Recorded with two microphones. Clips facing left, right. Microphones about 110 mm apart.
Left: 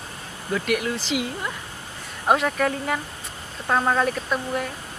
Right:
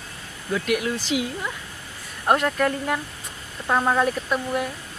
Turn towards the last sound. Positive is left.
turn(degrees=-5)  # may be behind; listen again after turning